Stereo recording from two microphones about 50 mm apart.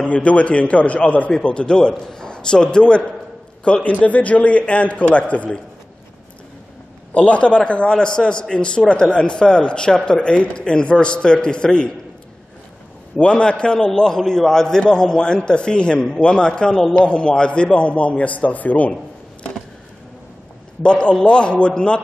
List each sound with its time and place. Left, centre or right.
0.0 s a man's voice: left
7.2 s a man's voice: left
13.2 s a man's voice: centre
20.8 s a man's voice: left